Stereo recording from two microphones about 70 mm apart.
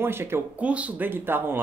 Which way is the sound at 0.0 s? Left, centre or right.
Right.